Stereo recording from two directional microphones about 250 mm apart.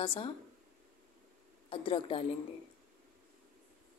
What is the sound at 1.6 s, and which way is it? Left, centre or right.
Speech, left.